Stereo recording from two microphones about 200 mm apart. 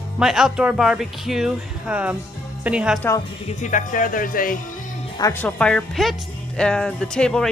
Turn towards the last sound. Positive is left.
turn(degrees=5)  # may be behind; listen again after turning